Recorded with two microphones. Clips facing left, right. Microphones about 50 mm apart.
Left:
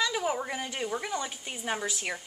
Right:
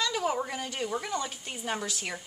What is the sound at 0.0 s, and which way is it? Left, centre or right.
A woman's voice, centre.